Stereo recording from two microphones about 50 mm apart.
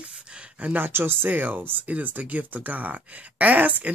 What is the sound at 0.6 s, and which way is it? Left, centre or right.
Speech, right.